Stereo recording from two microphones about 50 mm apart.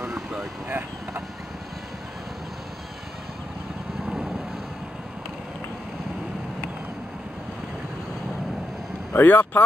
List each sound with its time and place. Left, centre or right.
0.0 s vehicle: right
0.7 s vehicle: right
4.0 s vehicle: centre
9.1 s speech: left